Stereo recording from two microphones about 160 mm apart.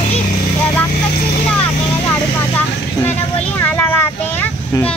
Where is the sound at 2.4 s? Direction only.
15° left (ahead or behind).